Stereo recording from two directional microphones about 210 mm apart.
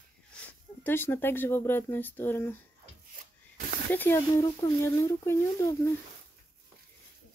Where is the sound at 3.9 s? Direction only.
10° left (ahead or behind).